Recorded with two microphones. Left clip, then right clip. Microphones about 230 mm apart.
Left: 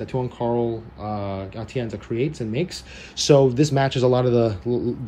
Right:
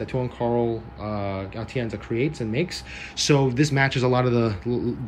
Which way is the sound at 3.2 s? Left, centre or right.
Centre.